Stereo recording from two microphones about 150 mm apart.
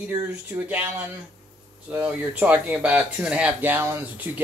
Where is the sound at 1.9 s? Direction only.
10° right (ahead or behind).